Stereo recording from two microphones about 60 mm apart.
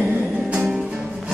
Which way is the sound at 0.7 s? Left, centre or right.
Centre.